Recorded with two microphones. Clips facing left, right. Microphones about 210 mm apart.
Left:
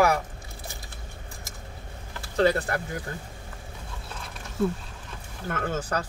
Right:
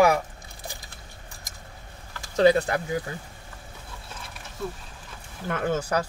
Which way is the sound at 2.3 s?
15° right (ahead or behind).